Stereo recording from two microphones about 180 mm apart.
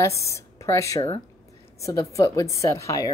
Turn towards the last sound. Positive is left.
turn(degrees=20)  # may be behind; listen again after turning